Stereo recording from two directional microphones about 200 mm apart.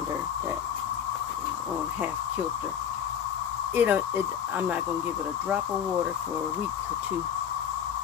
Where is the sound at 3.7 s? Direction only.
10° right (ahead or behind).